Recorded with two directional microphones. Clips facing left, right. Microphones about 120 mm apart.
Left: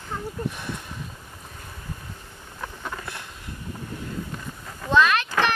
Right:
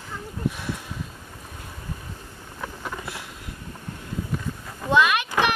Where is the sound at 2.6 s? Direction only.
5° right (ahead or behind).